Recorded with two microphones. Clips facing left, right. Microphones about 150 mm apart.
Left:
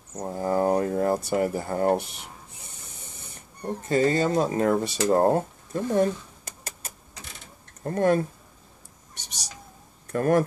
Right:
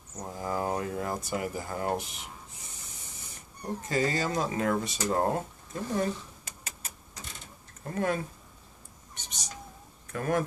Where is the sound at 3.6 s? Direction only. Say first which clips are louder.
Left 6 dB; 25° left (ahead or behind).